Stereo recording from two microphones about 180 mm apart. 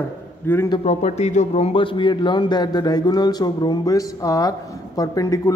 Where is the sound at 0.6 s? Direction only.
25° left (ahead or behind).